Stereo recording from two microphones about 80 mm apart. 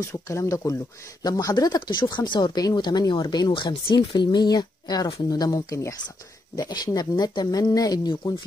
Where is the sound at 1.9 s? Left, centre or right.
Left.